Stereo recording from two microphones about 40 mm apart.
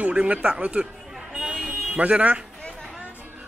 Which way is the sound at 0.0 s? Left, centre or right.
Right.